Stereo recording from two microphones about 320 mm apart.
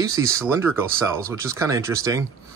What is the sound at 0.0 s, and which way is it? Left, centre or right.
Speech, centre.